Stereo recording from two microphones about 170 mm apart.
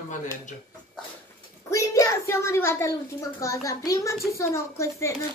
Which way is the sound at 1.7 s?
20° left (ahead or behind).